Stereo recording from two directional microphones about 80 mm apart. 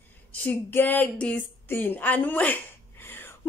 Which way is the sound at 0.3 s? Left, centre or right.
Left.